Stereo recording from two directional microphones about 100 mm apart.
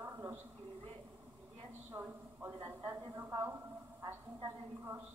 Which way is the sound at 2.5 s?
35° right (ahead or behind).